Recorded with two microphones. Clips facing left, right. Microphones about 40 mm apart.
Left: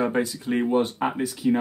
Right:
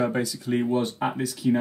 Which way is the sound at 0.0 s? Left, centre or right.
Left.